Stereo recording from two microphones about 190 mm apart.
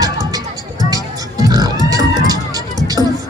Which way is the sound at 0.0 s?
20° right (ahead or behind).